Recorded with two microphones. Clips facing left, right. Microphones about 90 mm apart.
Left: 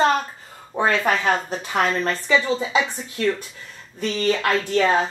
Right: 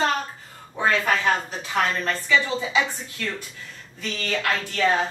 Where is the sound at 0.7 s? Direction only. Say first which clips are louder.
Left 3 dB; 50° left (ahead or behind).